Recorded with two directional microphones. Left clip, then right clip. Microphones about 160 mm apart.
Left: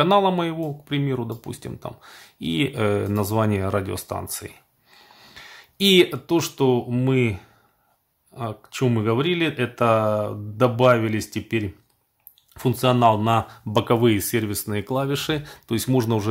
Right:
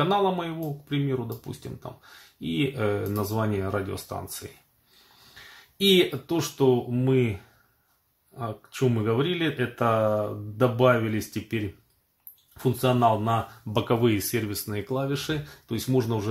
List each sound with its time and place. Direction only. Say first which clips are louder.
0.0 s speech: left 6 dB; 35° left (ahead or behind)
8.4 s speech: left 3 dB; 35° left (ahead or behind)